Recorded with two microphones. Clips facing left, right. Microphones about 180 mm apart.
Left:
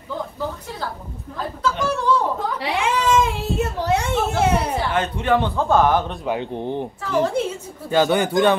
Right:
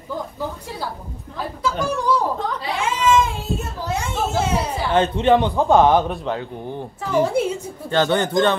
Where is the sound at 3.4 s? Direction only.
65° left (ahead or behind).